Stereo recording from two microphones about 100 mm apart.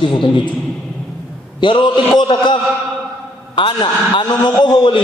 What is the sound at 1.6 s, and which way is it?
A man's voice, 50° left (ahead or behind).